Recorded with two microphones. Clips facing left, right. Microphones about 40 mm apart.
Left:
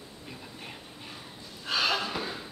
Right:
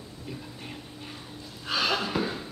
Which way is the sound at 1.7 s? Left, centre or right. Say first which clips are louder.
Right 1 dB; centre.